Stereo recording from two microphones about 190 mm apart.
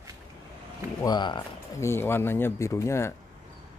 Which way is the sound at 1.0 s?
25° left (ahead or behind).